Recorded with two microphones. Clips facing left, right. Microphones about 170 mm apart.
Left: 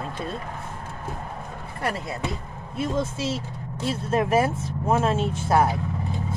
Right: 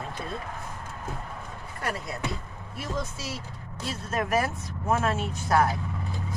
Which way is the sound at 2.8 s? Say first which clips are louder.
Left 8 dB; 25° left (ahead or behind).